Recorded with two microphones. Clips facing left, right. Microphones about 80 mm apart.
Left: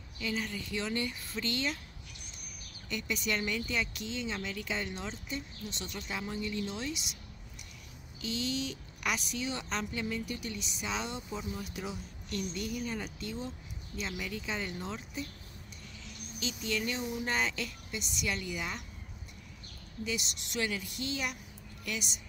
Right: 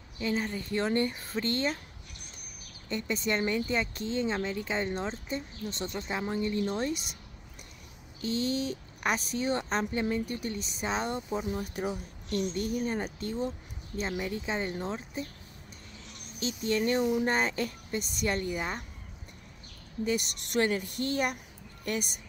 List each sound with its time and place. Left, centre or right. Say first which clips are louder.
0.2 s speech: right 5 dB; right
2.9 s speech: right 4 dB; right
8.2 s speech: right 5 dB; right
16.3 s speech: right 6 dB; right
20.1 s speech: right 7 dB; right